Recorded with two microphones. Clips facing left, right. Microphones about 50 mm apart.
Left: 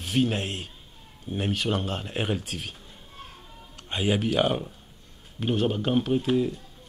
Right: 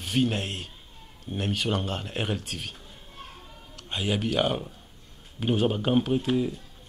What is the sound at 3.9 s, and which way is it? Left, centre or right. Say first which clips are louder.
A man's voice: left 2 dB; centre.